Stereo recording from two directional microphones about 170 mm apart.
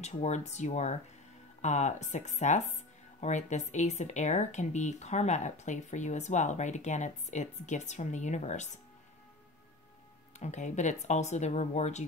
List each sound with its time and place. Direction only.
0.0 s speech: 40° left (ahead or behind)
10.4 s speech: 45° left (ahead or behind)